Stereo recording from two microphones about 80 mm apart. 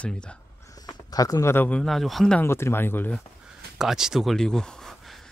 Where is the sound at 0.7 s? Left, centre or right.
Left.